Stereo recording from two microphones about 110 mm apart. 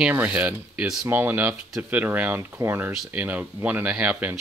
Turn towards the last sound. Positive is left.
turn(degrees=-10)  # may be behind; listen again after turning